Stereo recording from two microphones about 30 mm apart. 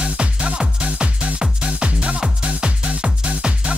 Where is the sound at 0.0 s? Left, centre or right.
Right.